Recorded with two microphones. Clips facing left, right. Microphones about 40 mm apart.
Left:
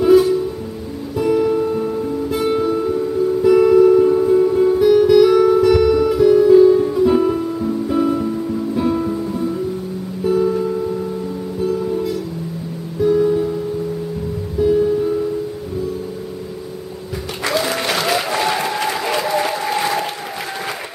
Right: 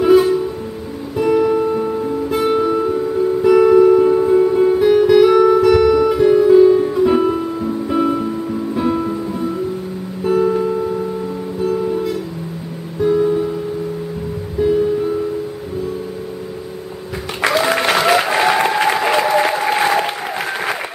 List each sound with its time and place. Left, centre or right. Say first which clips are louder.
0.0 s music: even; right
10.2 s music: right 1 dB; right
13.0 s music: even; centre
14.6 s music: even; centre
17.4 s applause: right 5 dB; right